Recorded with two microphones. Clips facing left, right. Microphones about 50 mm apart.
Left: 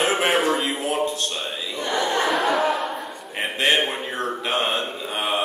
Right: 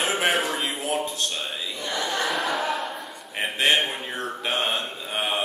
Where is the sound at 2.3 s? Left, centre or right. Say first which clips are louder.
Left 5 dB; centre.